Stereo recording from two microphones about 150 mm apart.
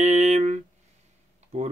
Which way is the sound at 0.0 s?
50° right (ahead or behind).